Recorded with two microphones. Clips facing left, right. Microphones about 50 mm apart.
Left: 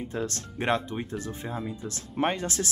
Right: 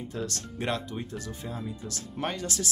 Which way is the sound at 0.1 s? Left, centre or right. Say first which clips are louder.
Left 2 dB; left.